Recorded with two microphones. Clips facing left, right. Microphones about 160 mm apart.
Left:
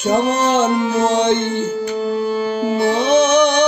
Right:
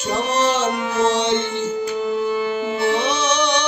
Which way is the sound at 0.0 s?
55° left (ahead or behind).